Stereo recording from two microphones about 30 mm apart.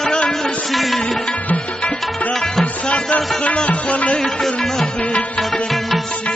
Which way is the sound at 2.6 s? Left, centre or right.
Left.